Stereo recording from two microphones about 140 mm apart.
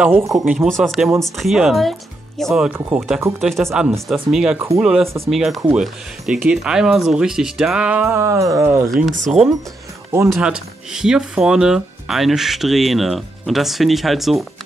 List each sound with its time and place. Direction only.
0.3 s speech: 5° right (ahead or behind)
8.1 s a sound: 20° right (ahead or behind)
9.3 s speech: centre (ahead or behind)